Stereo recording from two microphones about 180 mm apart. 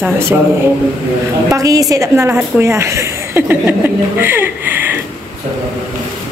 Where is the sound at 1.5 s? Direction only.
20° right (ahead or behind).